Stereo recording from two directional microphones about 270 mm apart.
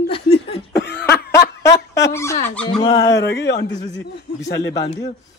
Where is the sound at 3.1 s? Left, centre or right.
Left.